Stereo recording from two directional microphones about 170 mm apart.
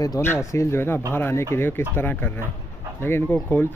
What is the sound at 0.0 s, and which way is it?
Speech, 15° left (ahead or behind).